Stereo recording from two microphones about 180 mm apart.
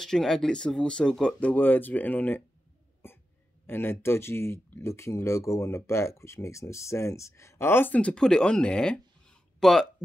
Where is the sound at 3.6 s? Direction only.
10° left (ahead or behind).